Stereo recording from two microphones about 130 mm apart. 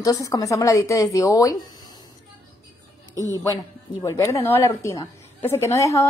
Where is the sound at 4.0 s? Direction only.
25° left (ahead or behind).